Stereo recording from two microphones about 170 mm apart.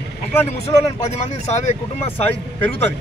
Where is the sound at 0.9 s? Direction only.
40° left (ahead or behind).